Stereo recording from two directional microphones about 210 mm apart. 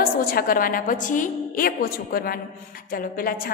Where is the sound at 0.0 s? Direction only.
45° left (ahead or behind).